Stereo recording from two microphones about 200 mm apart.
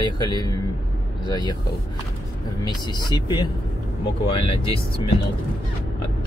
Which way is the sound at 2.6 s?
20° left (ahead or behind).